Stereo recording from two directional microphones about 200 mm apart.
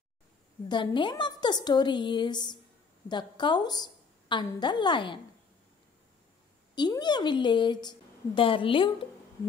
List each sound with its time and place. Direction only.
0.7 s a woman's voice: 25° left (ahead or behind)
6.7 s a woman's voice: 20° left (ahead or behind)